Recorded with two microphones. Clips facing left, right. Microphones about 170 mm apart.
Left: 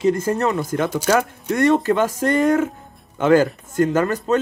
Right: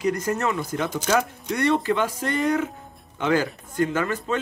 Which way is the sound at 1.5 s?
45° left (ahead or behind).